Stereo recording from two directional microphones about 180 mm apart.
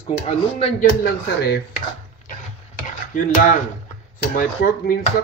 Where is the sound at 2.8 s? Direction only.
45° left (ahead or behind).